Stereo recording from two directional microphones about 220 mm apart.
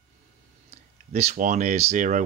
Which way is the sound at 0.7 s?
30° right (ahead or behind).